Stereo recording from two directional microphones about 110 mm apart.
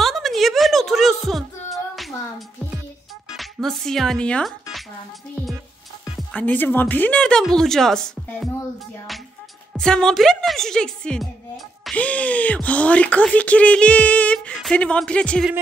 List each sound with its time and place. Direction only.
0.0 s music: centre (ahead or behind)
3.3 s speech: 5° left (ahead or behind)
6.3 s speech: 15° left (ahead or behind)
9.8 s a woman's voice: 5° left (ahead or behind)
11.9 s speech: 10° left (ahead or behind)